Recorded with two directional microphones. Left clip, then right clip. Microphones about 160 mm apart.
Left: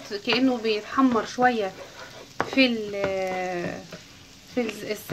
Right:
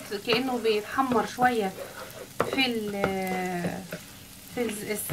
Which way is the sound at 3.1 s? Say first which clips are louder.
Left 3 dB; 50° left (ahead or behind).